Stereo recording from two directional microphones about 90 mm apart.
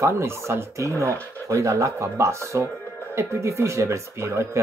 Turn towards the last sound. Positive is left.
turn(degrees=-30)  # may be behind; listen again after turning